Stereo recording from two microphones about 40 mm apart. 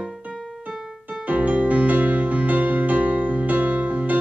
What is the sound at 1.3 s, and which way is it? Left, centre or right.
Music, right.